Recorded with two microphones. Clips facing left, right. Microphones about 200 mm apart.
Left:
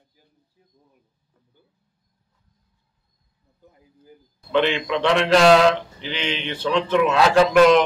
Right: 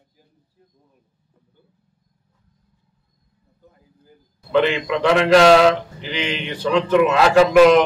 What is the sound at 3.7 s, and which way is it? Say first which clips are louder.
Speech: left 3 dB; 20° left (ahead or behind).